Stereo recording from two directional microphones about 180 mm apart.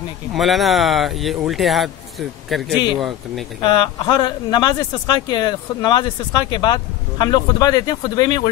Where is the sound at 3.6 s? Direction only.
25° left (ahead or behind).